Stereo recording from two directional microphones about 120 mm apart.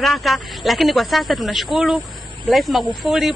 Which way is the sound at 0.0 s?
Centre (ahead or behind).